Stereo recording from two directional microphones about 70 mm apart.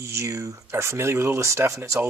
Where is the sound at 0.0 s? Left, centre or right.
Right.